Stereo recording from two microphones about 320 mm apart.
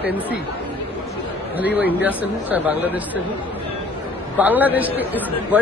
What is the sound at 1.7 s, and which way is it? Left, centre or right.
Speech, centre.